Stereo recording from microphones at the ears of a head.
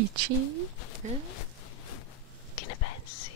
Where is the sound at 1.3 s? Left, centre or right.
Left.